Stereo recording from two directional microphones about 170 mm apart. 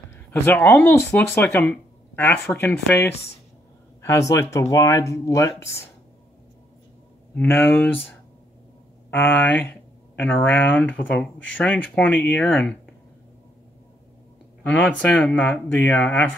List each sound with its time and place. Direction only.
0.3 s speech: 15° left (ahead or behind)
7.3 s speech: 10° left (ahead or behind)
9.1 s speech: 10° left (ahead or behind)
14.7 s speech: 5° left (ahead or behind)